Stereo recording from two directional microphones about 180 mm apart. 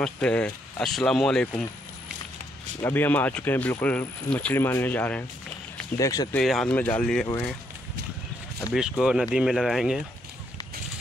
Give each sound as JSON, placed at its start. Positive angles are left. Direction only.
{"t": 0.0, "sound": "speech", "side_deg": 5}
{"t": 2.8, "sound": "speech", "side_deg": 10}
{"t": 6.3, "sound": "speech", "side_deg": 0}
{"t": 8.7, "sound": "speech", "side_deg": -5}